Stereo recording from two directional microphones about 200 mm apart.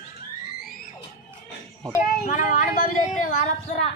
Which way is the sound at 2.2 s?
40° left (ahead or behind).